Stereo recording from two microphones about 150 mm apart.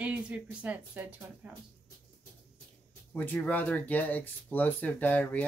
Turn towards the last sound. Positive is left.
turn(degrees=10)  # may be behind; listen again after turning